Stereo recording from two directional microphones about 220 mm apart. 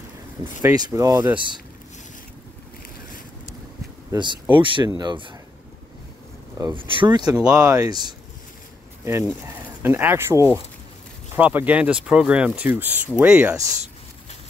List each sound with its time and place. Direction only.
0.6 s speech: 15° right (ahead or behind)
4.1 s speech: 20° right (ahead or behind)
6.6 s speech: 20° right (ahead or behind)
7.3 s speech: 10° right (ahead or behind)
9.8 s speech: 10° right (ahead or behind)